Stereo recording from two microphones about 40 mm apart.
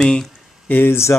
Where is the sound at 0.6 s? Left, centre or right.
Left.